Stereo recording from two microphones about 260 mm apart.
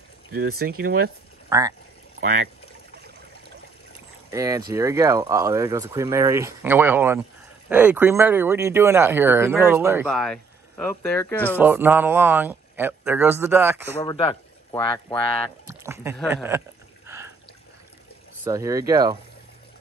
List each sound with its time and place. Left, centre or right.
0.3 s speech: right
1.5 s speech: centre
2.1 s speech: right
4.3 s speech: centre
11.6 s speech: centre
14.0 s speech: centre
15.6 s a sound: centre
18.4 s speech: centre